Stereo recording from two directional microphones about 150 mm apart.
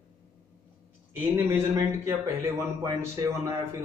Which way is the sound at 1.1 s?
15° right (ahead or behind).